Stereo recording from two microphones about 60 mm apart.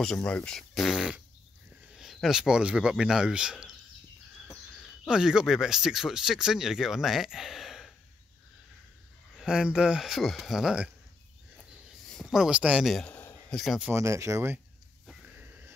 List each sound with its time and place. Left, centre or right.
0.0 s speech: centre
0.6 s speech: centre
2.2 s speech: centre
4.7 s speech: centre
9.4 s speech: centre
10.0 s speech: centre
12.1 s a sound: centre
12.4 s speech: centre
13.1 s a sound: left
13.9 s speech: right
15.3 s a sound: right